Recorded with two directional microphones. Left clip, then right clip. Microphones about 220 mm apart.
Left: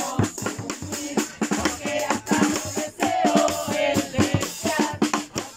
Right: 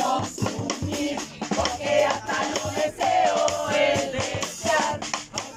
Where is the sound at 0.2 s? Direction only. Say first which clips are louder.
Left 1 dB; 55° left (ahead or behind).